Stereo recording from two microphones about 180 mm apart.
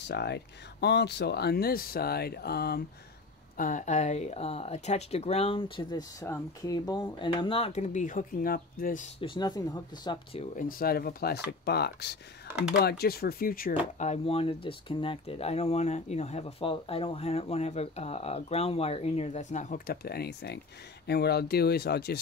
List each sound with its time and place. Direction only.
0.1 s speech: 70° left (ahead or behind)
3.5 s speech: 45° left (ahead or behind)
9.2 s speech: 25° left (ahead or behind)
10.5 s speech: 50° left (ahead or behind)